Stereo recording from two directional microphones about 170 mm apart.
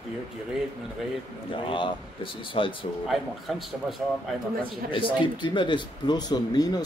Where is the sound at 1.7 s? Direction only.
30° left (ahead or behind).